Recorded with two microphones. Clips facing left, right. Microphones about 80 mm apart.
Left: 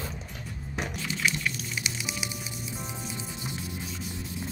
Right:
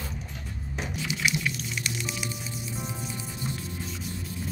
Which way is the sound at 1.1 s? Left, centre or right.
Centre.